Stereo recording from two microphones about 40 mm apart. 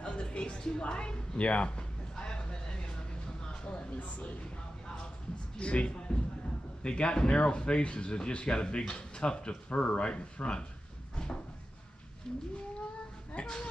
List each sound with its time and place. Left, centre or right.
0.0 s a sound: left
3.4 s speech: left
5.6 s speech: left
12.3 s whale vocalization: centre
13.3 s speech: left